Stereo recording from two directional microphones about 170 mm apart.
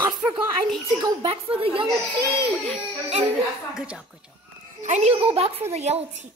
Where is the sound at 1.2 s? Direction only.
35° right (ahead or behind).